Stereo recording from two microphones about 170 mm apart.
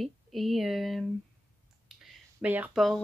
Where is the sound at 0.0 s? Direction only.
Centre (ahead or behind).